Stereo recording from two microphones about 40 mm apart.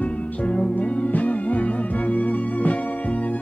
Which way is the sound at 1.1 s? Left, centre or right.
Left.